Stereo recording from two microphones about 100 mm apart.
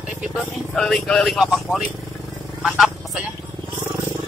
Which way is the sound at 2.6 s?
5° right (ahead or behind).